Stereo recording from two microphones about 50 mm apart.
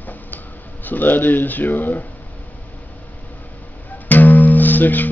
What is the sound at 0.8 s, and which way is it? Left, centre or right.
Speech, left.